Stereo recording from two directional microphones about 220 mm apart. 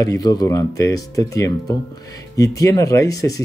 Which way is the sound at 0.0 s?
15° left (ahead or behind).